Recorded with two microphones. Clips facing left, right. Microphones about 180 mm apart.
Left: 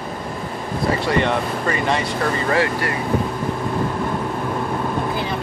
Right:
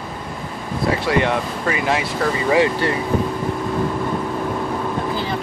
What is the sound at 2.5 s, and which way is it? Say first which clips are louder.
Speech: right 5 dB; 20° right (ahead or behind).